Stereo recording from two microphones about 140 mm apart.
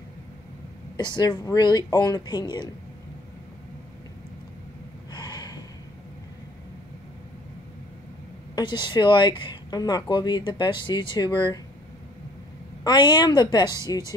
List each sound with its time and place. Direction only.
0.9 s speech: 30° left (ahead or behind)
5.1 s gasp: 30° left (ahead or behind)
8.5 s speech: 30° left (ahead or behind)
12.8 s speech: 30° left (ahead or behind)